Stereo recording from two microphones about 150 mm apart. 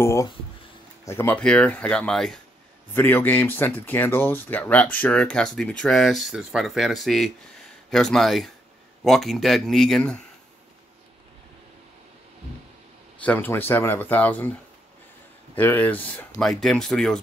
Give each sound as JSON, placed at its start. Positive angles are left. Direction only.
{"t": 0.0, "sound": "speech", "side_deg": 20}
{"t": 2.9, "sound": "speech", "side_deg": 15}
{"t": 13.2, "sound": "speech", "side_deg": 10}
{"t": 15.5, "sound": "speech", "side_deg": 15}